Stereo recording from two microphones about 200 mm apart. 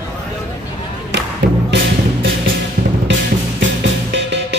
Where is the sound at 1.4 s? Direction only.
55° right (ahead or behind).